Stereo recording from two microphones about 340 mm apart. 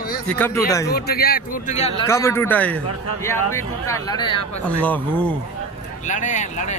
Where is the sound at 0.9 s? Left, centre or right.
Left.